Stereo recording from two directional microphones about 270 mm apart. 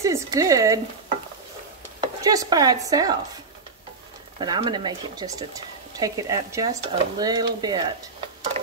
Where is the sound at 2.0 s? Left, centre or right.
Centre.